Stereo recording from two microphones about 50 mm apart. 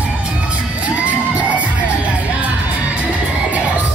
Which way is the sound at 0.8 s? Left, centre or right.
Right.